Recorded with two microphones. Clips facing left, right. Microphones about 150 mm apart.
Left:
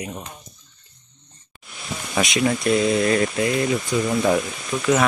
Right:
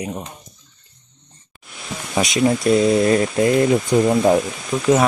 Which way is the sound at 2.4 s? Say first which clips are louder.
Right 5 dB; 35° right (ahead or behind).